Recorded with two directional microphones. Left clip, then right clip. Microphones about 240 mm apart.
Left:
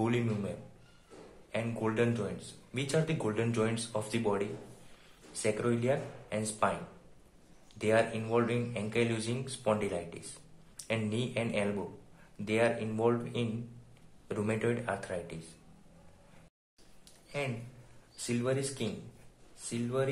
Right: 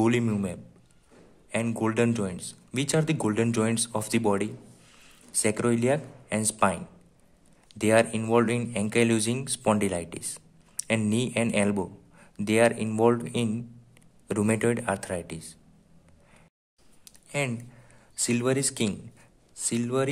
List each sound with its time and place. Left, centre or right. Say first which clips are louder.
0.0 s a man's voice: right 7 dB; right
1.5 s speech: right 6 dB; right
7.8 s speech: right 6 dB; right
17.4 s speech: right 7 dB; right